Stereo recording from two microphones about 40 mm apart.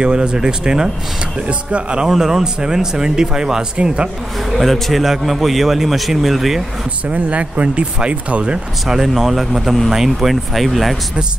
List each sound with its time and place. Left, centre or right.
0.0 s speech: right
1.5 s speech: right
2.0 s speech: centre
3.7 s speech: right
4.6 s a man's voice: centre
7.1 s speech: right
8.8 s a man's voice: centre